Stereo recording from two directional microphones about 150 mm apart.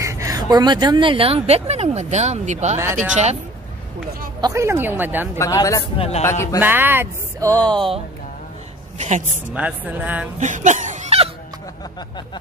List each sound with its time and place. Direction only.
0.0 s speech: 20° right (ahead or behind); by 2.8 s 50° right (ahead or behind)
4.4 s a woman's voice: 20° right (ahead or behind)
5.4 s speech: 20° left (ahead or behind)
5.9 s a man's voice: 45° left (ahead or behind)
6.2 s speech: 20° left (ahead or behind)
6.6 s a woman's voice: 15° right (ahead or behind)
7.4 s speech: 10° left (ahead or behind)
8.9 s a woman's voice: 50° right (ahead or behind)
9.5 s a woman's voice: 10° right (ahead or behind)
10.4 s a sound: 55° right (ahead or behind)